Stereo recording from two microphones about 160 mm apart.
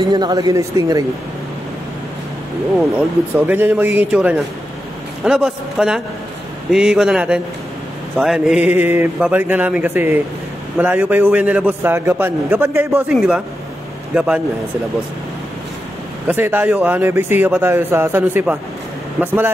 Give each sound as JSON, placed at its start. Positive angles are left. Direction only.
{"t": 0.1, "sound": "speech", "side_deg": -25}
{"t": 2.9, "sound": "a man's voice", "side_deg": -10}
{"t": 16.3, "sound": "a man's voice", "side_deg": -10}